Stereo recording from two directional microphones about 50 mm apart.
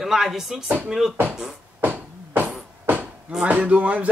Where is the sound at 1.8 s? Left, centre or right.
Right.